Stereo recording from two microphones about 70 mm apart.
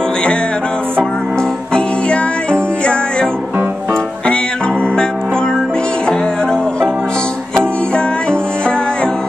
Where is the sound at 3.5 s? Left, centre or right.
Right.